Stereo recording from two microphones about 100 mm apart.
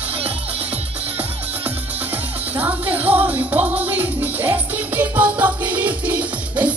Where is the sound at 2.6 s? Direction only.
15° right (ahead or behind).